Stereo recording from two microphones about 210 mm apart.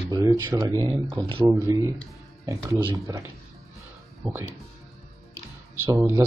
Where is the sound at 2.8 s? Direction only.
20° right (ahead or behind).